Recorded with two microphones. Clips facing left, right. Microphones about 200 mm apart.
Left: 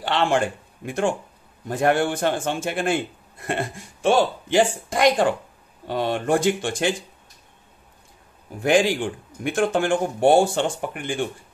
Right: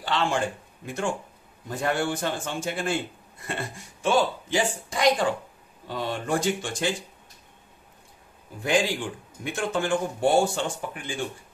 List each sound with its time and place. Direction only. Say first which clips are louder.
0.0 s a man's voice: left 5 dB; 65° left (ahead or behind)
1.7 s speech: left 6 dB; 55° left (ahead or behind)
8.6 s speech: left 6 dB; 60° left (ahead or behind)